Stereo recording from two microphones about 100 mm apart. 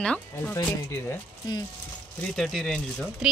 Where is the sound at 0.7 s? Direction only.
25° left (ahead or behind).